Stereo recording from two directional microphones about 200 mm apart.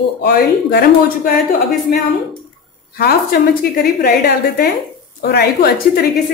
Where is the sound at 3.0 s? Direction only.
45° left (ahead or behind).